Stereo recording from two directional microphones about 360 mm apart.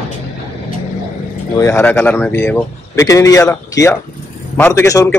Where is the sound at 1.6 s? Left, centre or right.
Centre.